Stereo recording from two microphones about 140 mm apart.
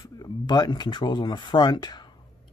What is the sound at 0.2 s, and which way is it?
Speech, 30° left (ahead or behind).